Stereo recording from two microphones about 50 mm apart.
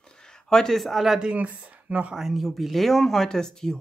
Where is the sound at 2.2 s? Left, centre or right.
Centre.